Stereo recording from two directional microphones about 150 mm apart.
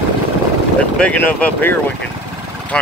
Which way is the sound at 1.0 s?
10° left (ahead or behind).